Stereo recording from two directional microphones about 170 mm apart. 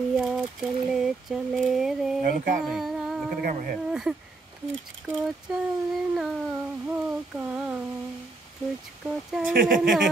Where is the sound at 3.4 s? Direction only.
55° right (ahead or behind).